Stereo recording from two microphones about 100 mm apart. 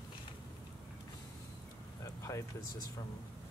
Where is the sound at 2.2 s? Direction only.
30° left (ahead or behind).